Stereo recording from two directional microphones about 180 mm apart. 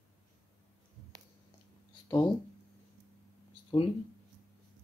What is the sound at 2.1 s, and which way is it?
Speech, 25° left (ahead or behind).